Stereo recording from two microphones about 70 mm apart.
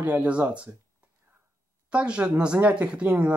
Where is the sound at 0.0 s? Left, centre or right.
Right.